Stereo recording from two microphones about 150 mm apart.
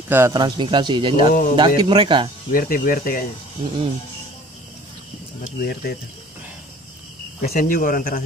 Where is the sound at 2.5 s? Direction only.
70° left (ahead or behind).